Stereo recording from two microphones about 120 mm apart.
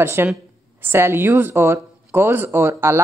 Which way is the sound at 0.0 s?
20° right (ahead or behind).